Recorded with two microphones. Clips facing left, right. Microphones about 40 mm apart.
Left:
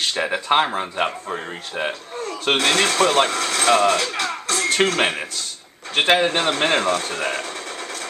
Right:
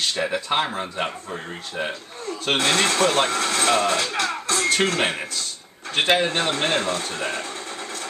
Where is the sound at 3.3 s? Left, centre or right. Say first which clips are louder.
Even; right.